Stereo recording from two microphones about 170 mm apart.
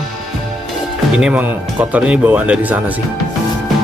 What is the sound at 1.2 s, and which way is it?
Speech, 5° right (ahead or behind).